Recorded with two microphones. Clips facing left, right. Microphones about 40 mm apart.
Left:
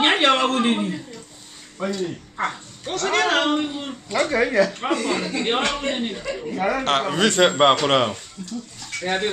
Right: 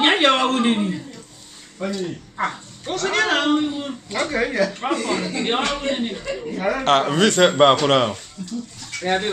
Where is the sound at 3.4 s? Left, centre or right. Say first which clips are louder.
Right 2 dB; centre.